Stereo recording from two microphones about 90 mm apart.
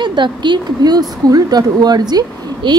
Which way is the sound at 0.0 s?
60° right (ahead or behind).